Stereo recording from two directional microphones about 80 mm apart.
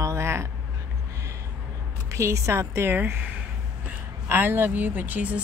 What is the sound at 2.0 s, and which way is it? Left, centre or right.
Speech, right.